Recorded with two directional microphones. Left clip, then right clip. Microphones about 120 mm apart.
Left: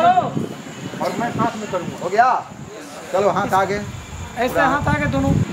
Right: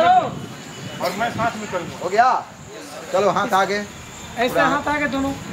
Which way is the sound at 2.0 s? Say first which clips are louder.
Left 1 dB; centre (ahead or behind).